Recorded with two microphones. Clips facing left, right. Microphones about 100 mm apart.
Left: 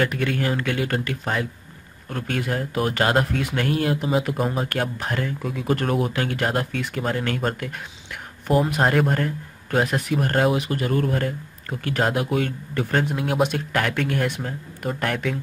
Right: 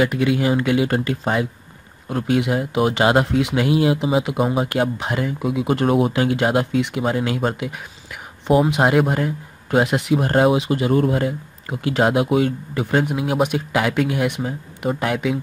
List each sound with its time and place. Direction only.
0.0 s speech: 10° right (ahead or behind)
3.5 s speech: 10° right (ahead or behind)
9.8 s speech: 20° right (ahead or behind)